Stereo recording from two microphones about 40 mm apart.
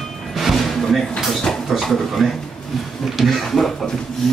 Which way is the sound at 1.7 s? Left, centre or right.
Centre.